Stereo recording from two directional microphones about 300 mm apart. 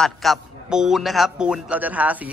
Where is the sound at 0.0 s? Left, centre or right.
Centre.